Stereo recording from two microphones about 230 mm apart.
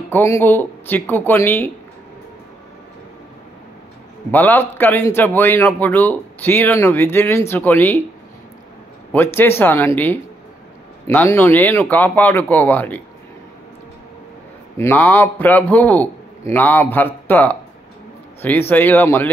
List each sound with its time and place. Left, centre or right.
0.1 s a man's voice: centre
4.3 s a man's voice: centre
9.1 s a man's voice: centre
14.8 s a man's voice: centre